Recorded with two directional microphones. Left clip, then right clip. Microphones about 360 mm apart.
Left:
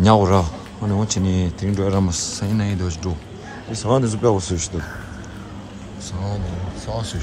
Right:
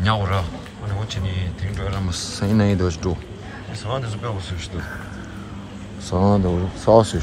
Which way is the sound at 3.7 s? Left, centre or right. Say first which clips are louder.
Left 8 dB; centre.